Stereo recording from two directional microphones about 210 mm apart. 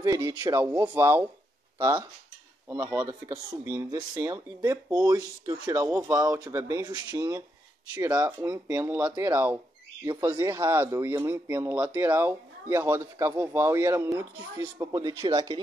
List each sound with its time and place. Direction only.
0.0 s speech: 15° right (ahead or behind)